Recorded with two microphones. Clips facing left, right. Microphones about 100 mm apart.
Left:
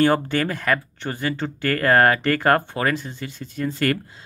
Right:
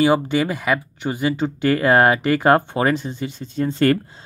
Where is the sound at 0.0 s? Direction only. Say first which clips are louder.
Right 2 dB; 10° right (ahead or behind).